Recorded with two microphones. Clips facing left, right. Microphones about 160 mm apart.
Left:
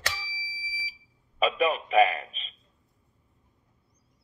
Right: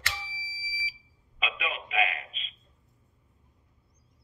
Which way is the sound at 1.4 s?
40° left (ahead or behind).